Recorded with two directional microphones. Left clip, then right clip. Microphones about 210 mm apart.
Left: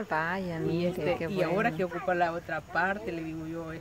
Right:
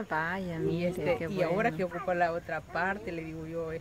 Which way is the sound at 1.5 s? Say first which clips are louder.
Left 1 dB; 10° right (ahead or behind).